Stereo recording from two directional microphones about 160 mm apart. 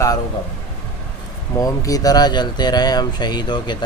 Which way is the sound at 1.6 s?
20° left (ahead or behind).